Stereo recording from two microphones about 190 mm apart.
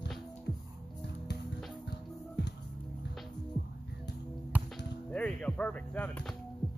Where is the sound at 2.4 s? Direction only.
65° left (ahead or behind).